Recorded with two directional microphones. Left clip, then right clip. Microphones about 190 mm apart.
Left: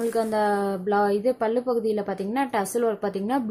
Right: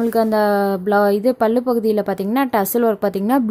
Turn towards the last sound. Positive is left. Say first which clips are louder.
# right 8 dB
turn(degrees=-50)  # may be behind; listen again after turning